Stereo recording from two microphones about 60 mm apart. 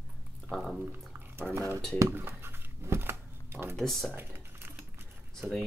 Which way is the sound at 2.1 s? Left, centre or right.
Right.